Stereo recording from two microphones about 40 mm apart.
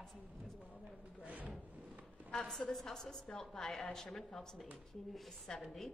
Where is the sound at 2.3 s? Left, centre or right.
Centre.